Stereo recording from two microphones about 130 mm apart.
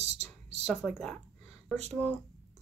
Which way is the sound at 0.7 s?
5° left (ahead or behind).